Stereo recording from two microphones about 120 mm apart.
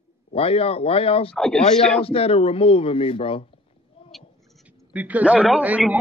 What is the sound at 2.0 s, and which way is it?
Speech, 50° left (ahead or behind).